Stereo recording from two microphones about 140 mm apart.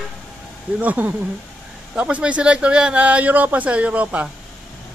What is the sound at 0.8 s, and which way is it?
Speech, 10° right (ahead or behind).